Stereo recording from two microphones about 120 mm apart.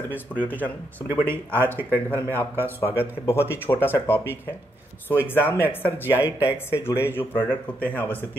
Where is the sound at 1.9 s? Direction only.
15° left (ahead or behind).